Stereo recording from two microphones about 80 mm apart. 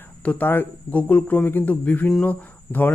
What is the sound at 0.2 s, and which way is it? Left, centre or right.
Speech, left.